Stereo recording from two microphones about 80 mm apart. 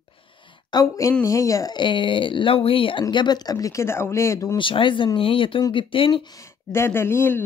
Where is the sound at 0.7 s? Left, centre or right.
Left.